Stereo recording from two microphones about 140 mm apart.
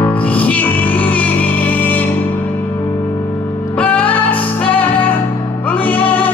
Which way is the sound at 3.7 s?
10° left (ahead or behind).